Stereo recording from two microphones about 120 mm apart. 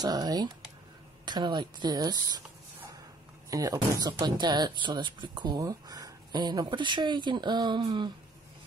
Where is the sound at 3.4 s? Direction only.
30° right (ahead or behind).